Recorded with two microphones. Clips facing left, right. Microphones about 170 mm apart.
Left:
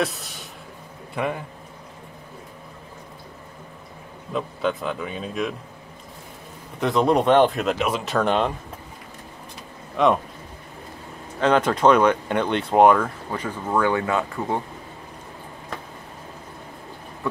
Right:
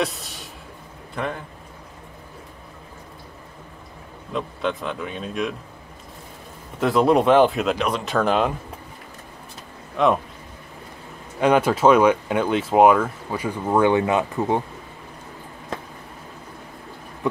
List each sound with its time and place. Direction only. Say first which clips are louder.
0.0 s a sound: even; centre (ahead or behind)
1.1 s speech: left 2 dB; 10° left (ahead or behind)
4.3 s speech: left 1 dB; centre (ahead or behind)
6.8 s speech: right 2 dB; 5° right (ahead or behind)
10.0 s speech: even; centre (ahead or behind)
11.3 s speech: right 2 dB; 10° right (ahead or behind)